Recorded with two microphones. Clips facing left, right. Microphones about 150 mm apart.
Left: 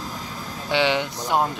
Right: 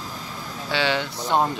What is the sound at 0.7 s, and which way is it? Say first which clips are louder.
Speech: left 3 dB; 20° left (ahead or behind).